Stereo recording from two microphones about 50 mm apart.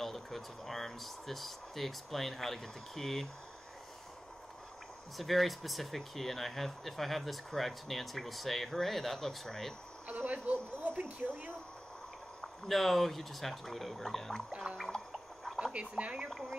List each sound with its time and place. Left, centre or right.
0.0 s speech: centre
5.1 s speech: centre
10.0 s speech: right
12.4 s speech: centre
14.8 s a sound: centre
15.7 s speech: right